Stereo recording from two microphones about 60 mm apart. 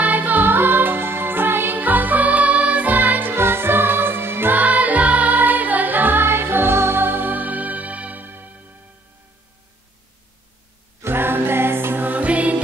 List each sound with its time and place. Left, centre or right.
0.0 s music: right
4.6 s music: right
11.0 s music: right